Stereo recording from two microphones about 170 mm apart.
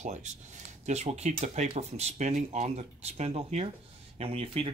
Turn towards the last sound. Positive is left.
turn(degrees=-35)  # may be behind; listen again after turning